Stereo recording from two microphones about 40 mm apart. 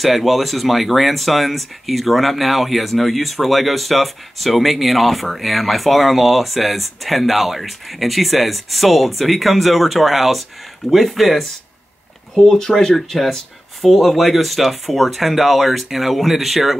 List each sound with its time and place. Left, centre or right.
0.0 s speech: centre
12.4 s speech: centre
12.9 s speech: centre